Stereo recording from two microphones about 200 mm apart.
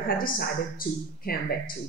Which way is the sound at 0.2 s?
45° left (ahead or behind).